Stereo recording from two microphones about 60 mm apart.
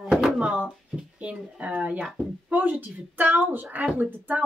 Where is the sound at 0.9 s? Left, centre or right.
Centre.